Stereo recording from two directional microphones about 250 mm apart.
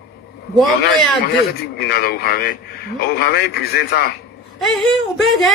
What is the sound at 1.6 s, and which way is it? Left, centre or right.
A man's voice, left.